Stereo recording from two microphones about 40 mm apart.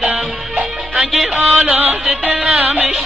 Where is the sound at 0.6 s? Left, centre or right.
Right.